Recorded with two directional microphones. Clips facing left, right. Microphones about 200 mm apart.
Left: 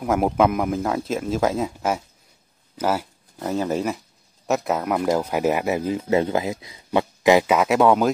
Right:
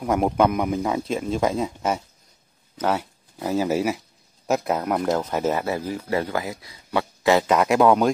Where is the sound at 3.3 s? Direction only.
5° right (ahead or behind).